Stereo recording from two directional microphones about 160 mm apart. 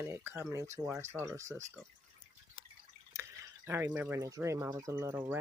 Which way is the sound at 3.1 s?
15° right (ahead or behind).